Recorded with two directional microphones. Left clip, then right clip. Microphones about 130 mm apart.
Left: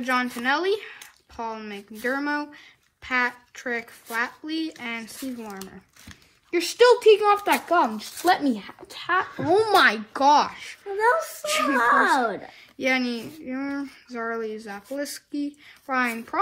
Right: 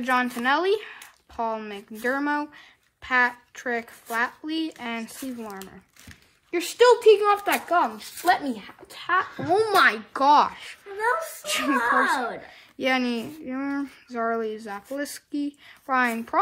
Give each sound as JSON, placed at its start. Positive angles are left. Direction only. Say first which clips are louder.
{"t": 0.0, "sound": "a child's voice", "louder": "right 1 dB", "side_deg": -35}
{"t": 7.7, "sound": "a child's voice", "louder": "left 1 dB", "side_deg": -5}
{"t": 11.0, "sound": "speech", "louder": "left 4 dB", "side_deg": 25}
{"t": 12.7, "sound": "speech", "louder": "even", "side_deg": -35}